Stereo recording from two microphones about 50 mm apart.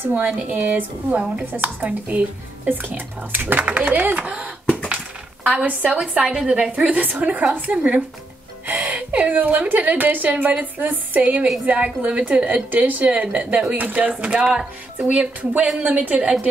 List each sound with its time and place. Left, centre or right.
0.0 s a woman's voice: right
1.9 s a woman's voice: right
5.7 s a woman's voice: right